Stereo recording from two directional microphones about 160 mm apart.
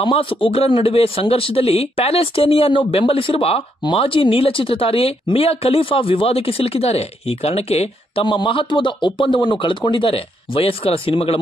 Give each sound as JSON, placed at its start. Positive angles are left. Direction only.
{"t": 0.0, "sound": "speech", "side_deg": 35}